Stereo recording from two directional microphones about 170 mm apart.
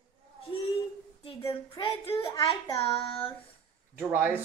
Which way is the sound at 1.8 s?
25° left (ahead or behind).